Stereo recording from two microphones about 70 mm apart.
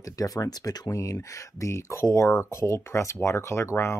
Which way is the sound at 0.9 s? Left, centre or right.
Left.